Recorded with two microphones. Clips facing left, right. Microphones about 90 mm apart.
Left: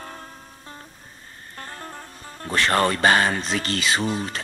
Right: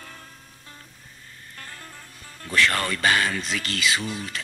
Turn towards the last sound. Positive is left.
turn(degrees=35)  # may be behind; listen again after turning